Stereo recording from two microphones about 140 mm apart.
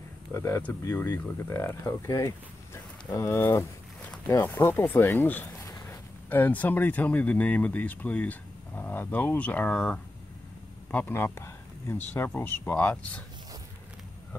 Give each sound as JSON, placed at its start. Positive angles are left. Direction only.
{"t": 0.3, "sound": "speech", "side_deg": 20}